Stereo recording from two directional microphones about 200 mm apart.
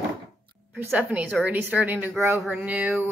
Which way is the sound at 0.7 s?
10° right (ahead or behind).